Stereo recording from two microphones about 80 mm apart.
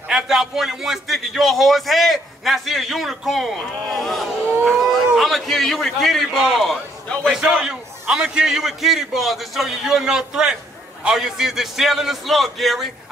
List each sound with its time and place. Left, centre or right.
0.1 s a man's voice: centre
4.6 s a sound: centre
5.1 s a man's voice: centre